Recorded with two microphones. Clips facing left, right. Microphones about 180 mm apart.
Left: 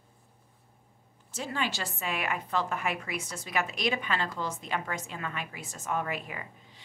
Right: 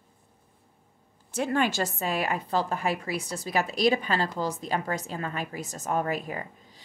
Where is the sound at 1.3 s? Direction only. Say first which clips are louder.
Right 8 dB; 55° right (ahead or behind).